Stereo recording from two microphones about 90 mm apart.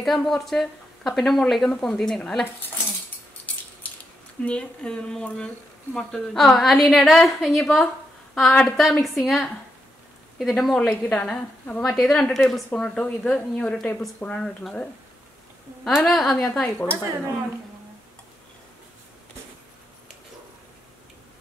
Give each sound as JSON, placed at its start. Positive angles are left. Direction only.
{"t": 0.0, "sound": "a woman's voice", "side_deg": 0}
{"t": 4.5, "sound": "a woman's voice", "side_deg": 10}
{"t": 10.8, "sound": "a woman's voice", "side_deg": 10}
{"t": 16.6, "sound": "speech", "side_deg": 20}